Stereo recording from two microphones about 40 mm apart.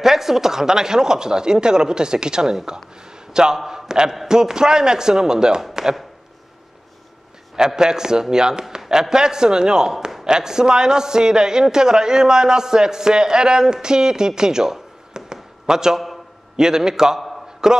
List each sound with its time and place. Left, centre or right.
0.0 s a man's voice: centre
7.5 s a man's voice: centre